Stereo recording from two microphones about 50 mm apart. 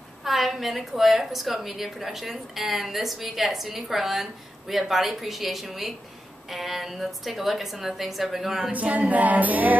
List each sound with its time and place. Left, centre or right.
0.2 s a woman's voice: centre
8.7 s music: right